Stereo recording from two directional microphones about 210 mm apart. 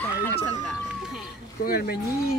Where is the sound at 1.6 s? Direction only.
45° left (ahead or behind).